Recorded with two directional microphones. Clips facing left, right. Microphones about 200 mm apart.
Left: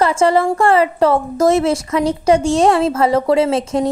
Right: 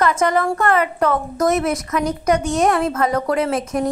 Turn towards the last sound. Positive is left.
turn(degrees=25)  # may be behind; listen again after turning